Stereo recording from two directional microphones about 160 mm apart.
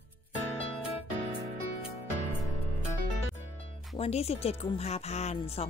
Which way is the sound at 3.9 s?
40° left (ahead or behind).